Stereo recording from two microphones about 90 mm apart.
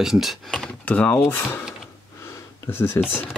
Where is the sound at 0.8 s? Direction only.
15° left (ahead or behind).